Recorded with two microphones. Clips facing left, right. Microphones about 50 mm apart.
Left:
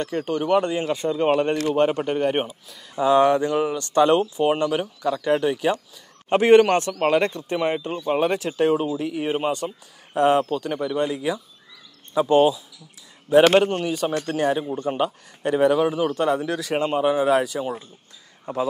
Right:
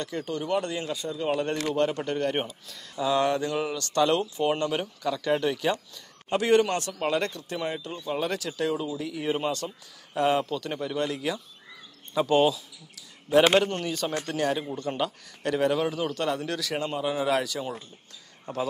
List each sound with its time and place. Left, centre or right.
0.0 s speech: left
0.8 s speech: left
1.7 s a man's voice: left
3.0 s a man's voice: left
6.2 s a man's voice: left